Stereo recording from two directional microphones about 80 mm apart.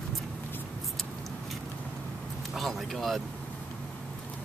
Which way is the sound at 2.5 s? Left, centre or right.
Centre.